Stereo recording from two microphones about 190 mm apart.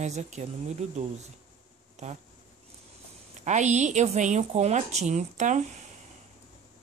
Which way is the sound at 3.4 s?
40° right (ahead or behind).